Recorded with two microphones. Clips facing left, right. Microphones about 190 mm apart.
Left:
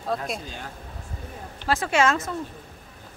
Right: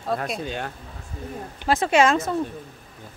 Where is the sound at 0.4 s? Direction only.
70° right (ahead or behind).